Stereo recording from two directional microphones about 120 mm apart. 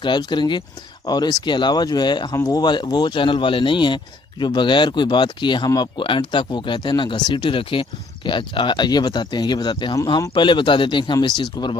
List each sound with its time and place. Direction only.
0.0 s speech: 40° left (ahead or behind)